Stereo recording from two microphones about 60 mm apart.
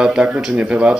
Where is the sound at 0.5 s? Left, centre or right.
Centre.